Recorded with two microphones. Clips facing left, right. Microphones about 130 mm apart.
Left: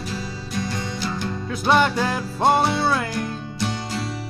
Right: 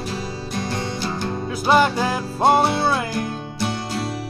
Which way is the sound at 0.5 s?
50° right (ahead or behind).